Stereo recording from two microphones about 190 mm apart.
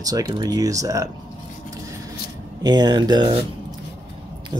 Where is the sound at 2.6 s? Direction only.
20° right (ahead or behind).